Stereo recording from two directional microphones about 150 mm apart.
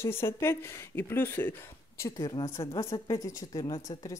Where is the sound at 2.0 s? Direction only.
25° left (ahead or behind).